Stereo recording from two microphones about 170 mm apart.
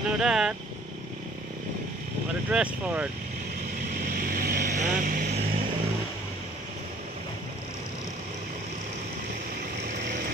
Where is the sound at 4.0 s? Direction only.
55° right (ahead or behind).